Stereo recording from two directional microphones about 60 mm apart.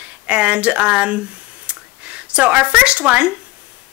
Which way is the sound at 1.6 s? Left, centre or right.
Right.